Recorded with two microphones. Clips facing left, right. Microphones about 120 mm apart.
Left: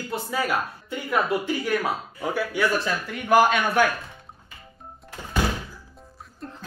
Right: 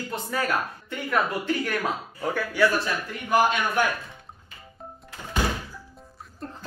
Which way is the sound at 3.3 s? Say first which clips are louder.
Left 3 dB; 90° left.